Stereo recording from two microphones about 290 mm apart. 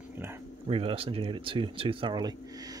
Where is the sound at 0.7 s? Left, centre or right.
Centre.